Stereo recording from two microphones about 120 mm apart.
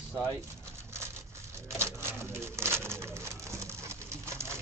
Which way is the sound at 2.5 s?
20° right (ahead or behind).